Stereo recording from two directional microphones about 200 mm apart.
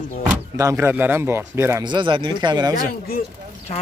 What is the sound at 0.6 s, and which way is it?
A man's voice, 15° right (ahead or behind).